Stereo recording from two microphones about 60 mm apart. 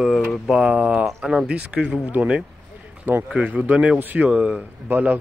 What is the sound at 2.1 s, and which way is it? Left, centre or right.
Speech, right.